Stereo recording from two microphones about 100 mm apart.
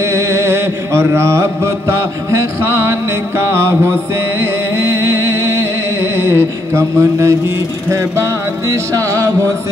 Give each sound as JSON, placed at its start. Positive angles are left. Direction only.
{"t": 0.0, "sound": "mantra", "side_deg": -30}
{"t": 4.4, "sound": "music", "side_deg": -25}
{"t": 8.6, "sound": "music", "side_deg": -30}